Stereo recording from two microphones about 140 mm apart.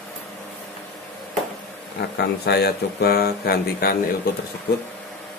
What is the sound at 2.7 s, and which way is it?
A man's voice, 90° left.